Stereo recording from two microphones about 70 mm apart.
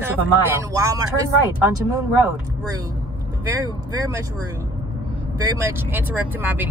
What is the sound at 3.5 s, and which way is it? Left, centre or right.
Speech, right.